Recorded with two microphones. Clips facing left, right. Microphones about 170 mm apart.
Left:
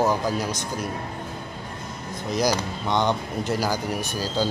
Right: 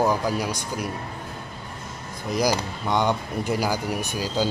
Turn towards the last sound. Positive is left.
turn(degrees=-15)  # may be behind; listen again after turning